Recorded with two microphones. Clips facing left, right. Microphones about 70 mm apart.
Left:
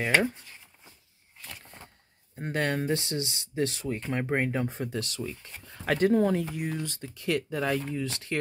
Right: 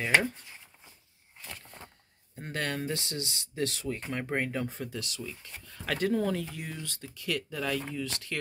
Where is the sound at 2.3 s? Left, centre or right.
Left.